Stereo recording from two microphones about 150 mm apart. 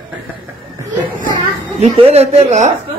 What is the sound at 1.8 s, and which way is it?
Speech, 45° right (ahead or behind).